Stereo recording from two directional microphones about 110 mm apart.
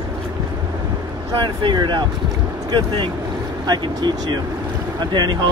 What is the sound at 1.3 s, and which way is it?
Speech, 45° right (ahead or behind).